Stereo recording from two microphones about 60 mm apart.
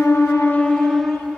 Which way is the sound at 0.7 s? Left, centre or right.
Centre.